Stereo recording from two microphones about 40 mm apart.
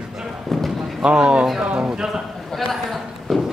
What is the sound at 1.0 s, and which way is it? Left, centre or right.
Speech, right.